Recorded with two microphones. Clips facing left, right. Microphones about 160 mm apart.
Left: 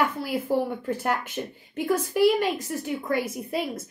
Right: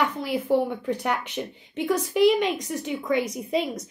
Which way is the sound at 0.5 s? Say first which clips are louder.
Right 3 dB; 5° left (ahead or behind).